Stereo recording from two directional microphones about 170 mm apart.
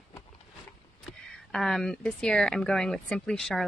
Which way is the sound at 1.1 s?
5° left (ahead or behind).